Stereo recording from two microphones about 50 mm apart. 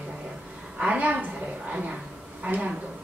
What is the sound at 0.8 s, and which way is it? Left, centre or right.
Speech, right.